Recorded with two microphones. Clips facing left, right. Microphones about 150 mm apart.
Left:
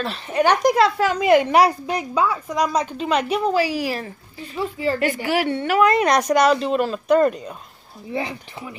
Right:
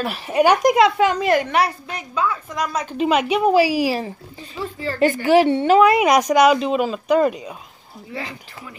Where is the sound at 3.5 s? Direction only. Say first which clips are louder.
Right 5 dB; 15° right (ahead or behind).